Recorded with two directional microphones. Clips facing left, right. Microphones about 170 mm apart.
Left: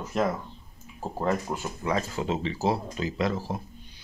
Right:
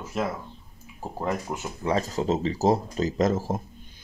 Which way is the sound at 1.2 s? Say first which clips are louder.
Left 1 dB; 20° right (ahead or behind).